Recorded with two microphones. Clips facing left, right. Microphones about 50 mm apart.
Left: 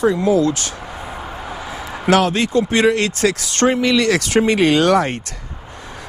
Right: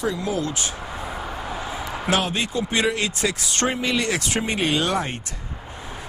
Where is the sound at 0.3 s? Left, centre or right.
Left.